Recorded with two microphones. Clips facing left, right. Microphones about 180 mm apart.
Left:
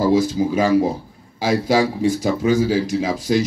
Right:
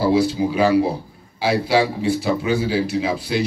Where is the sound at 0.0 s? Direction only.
45° left (ahead or behind).